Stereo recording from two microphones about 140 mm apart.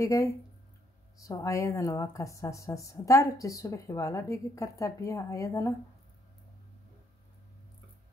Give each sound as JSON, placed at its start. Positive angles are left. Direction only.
{"t": 0.0, "sound": "speech", "side_deg": 25}